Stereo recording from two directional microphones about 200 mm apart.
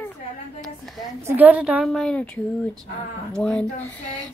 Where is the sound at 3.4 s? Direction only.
5° left (ahead or behind).